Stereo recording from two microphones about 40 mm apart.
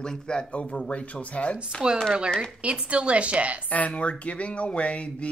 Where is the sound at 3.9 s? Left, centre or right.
Left.